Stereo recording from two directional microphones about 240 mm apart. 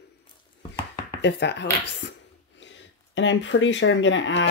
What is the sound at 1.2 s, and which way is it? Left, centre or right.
Speech, left.